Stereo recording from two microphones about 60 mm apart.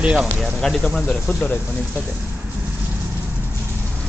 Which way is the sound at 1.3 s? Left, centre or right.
Left.